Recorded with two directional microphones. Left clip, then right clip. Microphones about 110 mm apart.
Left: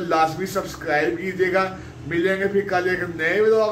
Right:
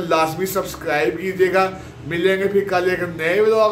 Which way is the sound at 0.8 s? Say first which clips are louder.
Right 1 dB; 20° right (ahead or behind).